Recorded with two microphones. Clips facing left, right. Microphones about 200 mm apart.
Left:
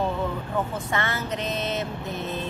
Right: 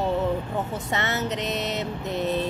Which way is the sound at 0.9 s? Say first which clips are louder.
Right 2 dB; 20° right (ahead or behind).